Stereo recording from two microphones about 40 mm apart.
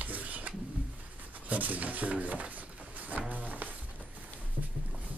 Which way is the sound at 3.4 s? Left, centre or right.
Right.